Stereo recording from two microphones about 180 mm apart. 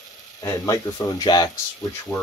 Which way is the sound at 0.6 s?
20° left (ahead or behind).